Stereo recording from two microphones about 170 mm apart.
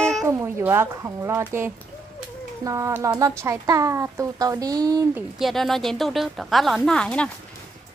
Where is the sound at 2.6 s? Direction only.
15° right (ahead or behind).